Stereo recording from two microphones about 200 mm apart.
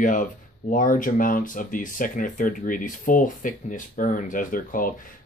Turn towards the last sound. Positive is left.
turn(degrees=45)  # may be behind; listen again after turning